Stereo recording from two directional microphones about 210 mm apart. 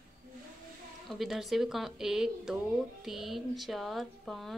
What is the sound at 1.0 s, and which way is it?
Speech, centre (ahead or behind).